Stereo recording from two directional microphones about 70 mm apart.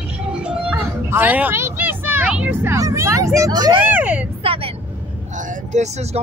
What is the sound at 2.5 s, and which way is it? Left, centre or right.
Speech, right.